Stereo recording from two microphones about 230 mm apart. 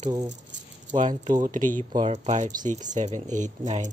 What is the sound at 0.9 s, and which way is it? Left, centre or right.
Speech, right.